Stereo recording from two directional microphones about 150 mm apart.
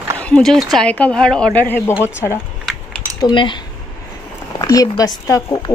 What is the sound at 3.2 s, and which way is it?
Speech, 30° left (ahead or behind).